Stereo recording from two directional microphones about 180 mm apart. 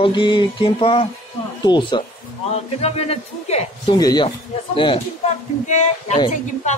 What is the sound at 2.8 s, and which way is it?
A man's voice, 35° left (ahead or behind).